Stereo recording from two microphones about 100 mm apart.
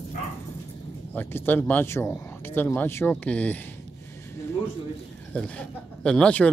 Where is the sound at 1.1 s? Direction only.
20° left (ahead or behind).